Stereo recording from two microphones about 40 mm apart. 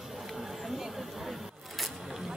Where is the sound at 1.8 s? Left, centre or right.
Centre.